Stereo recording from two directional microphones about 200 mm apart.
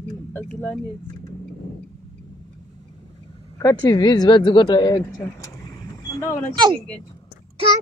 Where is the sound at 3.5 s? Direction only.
20° left (ahead or behind).